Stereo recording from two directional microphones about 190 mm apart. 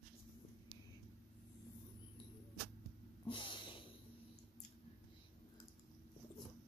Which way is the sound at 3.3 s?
25° left (ahead or behind).